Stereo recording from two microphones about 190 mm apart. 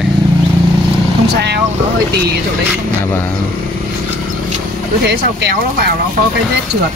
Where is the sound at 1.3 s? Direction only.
60° right (ahead or behind).